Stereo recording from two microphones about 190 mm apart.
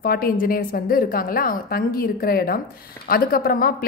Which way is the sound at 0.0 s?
50° left (ahead or behind).